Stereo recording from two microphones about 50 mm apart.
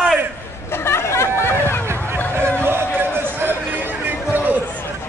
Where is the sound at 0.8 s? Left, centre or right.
Left.